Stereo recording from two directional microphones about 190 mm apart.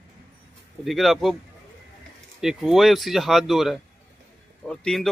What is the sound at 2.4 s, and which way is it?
Speech, centre (ahead or behind).